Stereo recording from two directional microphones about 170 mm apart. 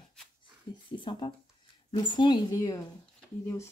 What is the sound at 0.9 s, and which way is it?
Speech, 30° left (ahead or behind).